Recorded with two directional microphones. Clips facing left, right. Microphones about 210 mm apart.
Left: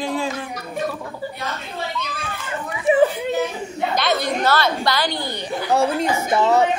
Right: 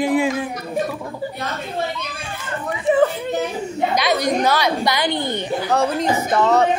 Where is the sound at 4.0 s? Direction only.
15° right (ahead or behind).